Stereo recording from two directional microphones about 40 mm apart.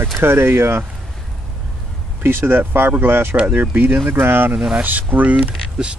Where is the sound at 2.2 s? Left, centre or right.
Right.